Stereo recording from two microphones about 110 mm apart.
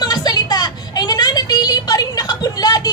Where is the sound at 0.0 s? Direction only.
35° left (ahead or behind).